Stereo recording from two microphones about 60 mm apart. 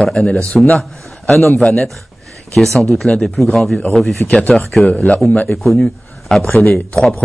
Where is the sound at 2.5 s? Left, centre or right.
Centre.